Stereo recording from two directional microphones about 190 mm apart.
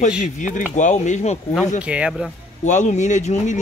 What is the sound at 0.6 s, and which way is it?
Speech, 40° left (ahead or behind).